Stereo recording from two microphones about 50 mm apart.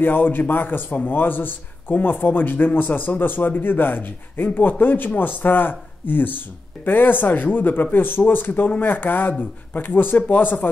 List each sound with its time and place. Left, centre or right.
0.0 s speech: left